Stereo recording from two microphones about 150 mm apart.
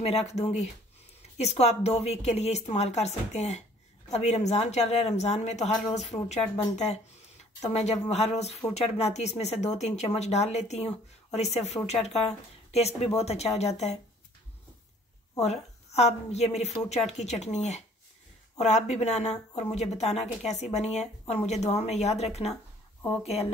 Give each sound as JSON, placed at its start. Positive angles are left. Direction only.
{"t": 0.0, "sound": "speech", "side_deg": 45}
{"t": 7.6, "sound": "speech", "side_deg": 50}
{"t": 15.4, "sound": "speech", "side_deg": 45}